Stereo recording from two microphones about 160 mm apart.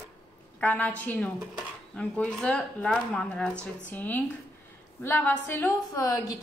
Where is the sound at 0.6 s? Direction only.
10° left (ahead or behind).